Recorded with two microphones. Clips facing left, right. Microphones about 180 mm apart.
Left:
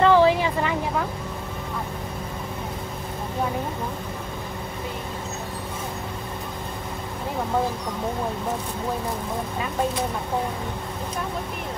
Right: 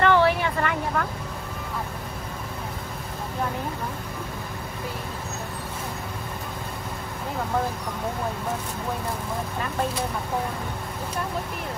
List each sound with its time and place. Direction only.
0.0 s vehicle: 15° left (ahead or behind)